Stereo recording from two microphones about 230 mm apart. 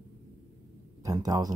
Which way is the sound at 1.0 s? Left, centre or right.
Centre.